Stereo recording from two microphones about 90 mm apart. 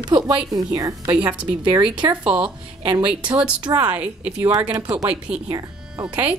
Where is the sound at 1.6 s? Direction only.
70° right (ahead or behind).